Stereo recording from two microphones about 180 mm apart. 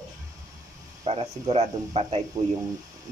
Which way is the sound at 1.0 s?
35° right (ahead or behind).